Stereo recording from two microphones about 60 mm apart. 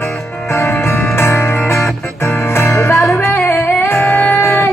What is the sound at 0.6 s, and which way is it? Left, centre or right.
Music, left.